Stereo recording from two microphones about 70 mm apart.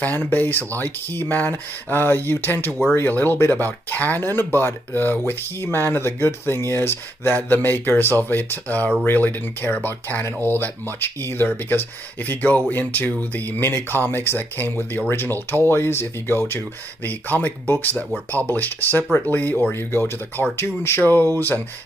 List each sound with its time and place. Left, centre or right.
0.0 s speech: left
19.7 s speech: left